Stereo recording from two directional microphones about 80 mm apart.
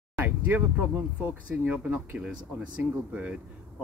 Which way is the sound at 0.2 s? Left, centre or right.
Right.